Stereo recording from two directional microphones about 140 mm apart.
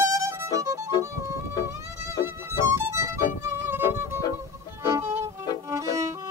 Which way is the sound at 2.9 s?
20° right (ahead or behind).